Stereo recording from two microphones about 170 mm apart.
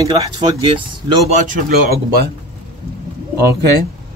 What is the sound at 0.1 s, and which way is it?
Speech, 30° right (ahead or behind).